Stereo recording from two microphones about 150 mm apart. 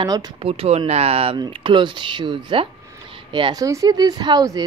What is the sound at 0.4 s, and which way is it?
Speech, 40° right (ahead or behind).